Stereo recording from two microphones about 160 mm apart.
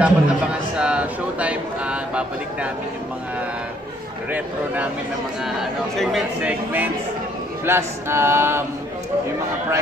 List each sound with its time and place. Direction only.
0.0 s a man's voice: 5° right (ahead or behind)
5.4 s speech: centre (ahead or behind)
7.6 s a sound: 15° right (ahead or behind)